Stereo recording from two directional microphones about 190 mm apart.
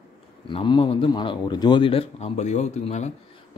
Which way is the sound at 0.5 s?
25° left (ahead or behind).